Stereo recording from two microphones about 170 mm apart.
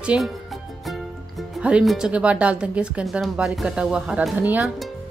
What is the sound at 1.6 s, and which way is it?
Speech, 5° right (ahead or behind).